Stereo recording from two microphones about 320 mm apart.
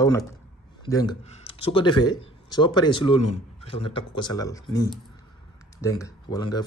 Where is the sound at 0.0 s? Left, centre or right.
Centre.